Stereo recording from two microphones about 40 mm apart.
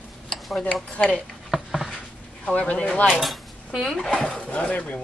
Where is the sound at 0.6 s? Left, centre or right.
Left.